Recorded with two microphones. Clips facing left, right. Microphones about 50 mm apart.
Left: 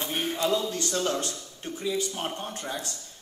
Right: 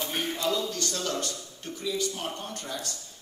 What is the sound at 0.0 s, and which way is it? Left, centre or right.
Speech, left.